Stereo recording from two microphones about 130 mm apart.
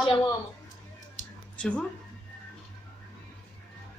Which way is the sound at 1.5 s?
10° left (ahead or behind).